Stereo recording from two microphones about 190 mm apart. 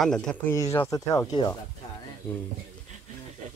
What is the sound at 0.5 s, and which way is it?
Speech, 15° left (ahead or behind).